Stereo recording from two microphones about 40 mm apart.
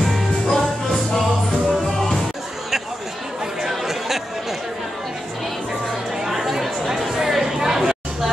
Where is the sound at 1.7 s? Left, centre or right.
Centre.